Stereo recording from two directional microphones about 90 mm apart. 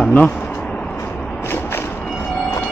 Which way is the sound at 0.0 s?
15° left (ahead or behind).